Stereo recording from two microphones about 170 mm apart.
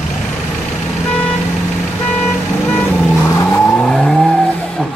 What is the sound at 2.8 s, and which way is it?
Vehicle, 10° left (ahead or behind).